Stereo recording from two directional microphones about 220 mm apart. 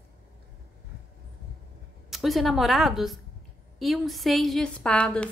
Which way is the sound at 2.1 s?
Centre (ahead or behind).